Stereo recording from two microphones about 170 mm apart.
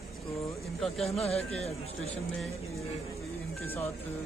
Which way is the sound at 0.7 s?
Centre (ahead or behind).